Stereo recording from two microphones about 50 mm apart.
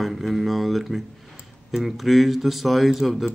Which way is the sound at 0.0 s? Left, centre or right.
Centre.